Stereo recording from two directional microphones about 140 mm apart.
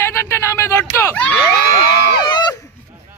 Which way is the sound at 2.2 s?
30° left (ahead or behind).